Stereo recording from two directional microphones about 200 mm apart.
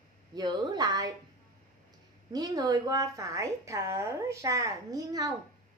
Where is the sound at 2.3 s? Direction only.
20° right (ahead or behind).